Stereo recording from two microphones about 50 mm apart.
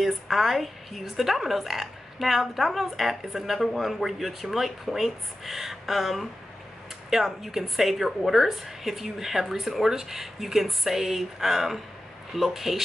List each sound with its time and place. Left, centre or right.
0.0 s a woman's voice: centre